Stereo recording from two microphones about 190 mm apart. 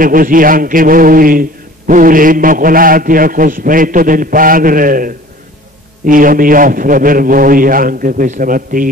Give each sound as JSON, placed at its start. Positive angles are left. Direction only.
{"t": 0.0, "sound": "a man's voice", "side_deg": -45}